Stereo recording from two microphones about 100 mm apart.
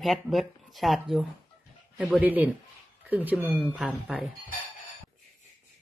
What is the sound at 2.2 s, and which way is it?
Speech, 15° right (ahead or behind).